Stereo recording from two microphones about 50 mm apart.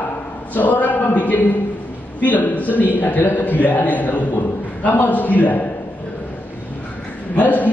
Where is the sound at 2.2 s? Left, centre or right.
Left.